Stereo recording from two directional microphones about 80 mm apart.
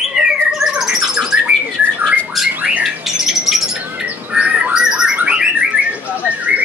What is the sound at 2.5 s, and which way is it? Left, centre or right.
Squawk, centre.